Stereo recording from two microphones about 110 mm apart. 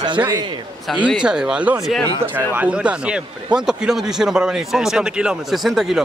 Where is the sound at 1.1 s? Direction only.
5° right (ahead or behind).